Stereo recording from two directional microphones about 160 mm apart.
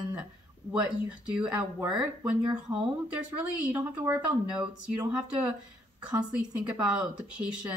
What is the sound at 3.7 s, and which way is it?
Speech, 15° right (ahead or behind).